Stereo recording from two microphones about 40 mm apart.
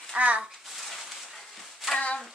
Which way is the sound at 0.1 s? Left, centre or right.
Right.